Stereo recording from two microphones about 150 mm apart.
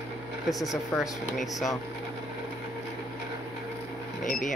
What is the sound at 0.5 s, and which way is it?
Speech, centre (ahead or behind).